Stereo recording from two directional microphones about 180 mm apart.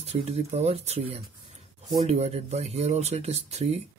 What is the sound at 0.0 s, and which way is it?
Speech, 35° right (ahead or behind).